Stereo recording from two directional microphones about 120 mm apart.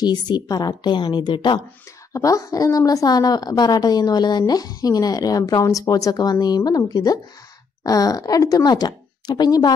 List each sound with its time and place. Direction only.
0.0 s a woman's voice: 35° left (ahead or behind)
2.1 s a woman's voice: 30° left (ahead or behind)